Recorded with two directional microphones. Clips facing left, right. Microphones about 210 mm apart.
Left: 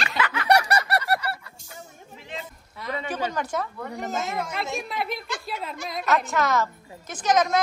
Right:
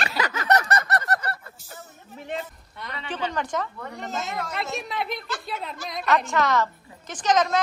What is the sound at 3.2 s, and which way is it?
A woman's voice, 10° left (ahead or behind).